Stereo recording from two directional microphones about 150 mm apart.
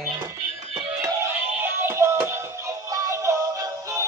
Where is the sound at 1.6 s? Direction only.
15° right (ahead or behind).